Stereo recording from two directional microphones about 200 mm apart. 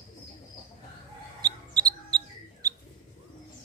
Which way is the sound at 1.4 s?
20° right (ahead or behind).